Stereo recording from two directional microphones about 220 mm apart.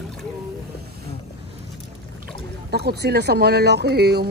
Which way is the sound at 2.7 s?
50° right (ahead or behind).